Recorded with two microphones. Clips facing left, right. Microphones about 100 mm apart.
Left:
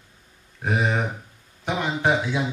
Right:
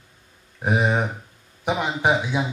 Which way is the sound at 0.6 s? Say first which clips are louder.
Right 2 dB; 15° right (ahead or behind).